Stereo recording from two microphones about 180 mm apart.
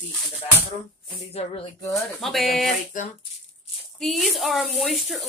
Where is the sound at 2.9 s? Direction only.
45° left (ahead or behind).